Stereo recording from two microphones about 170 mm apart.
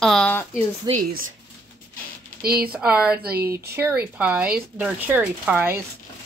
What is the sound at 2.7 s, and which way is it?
Speech, 10° right (ahead or behind).